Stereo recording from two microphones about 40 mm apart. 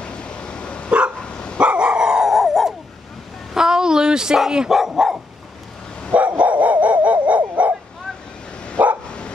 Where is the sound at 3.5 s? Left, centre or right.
Centre.